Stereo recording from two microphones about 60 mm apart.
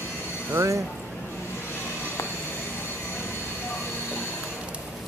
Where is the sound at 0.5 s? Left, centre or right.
Right.